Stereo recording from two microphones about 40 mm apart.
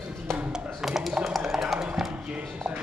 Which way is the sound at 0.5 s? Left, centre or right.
Centre.